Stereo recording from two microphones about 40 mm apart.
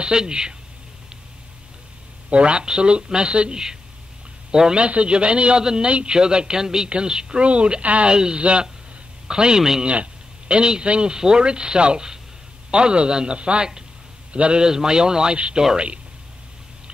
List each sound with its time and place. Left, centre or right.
0.0 s speech: right
2.2 s speech: right
5.9 s speech: right
8.1 s speech: right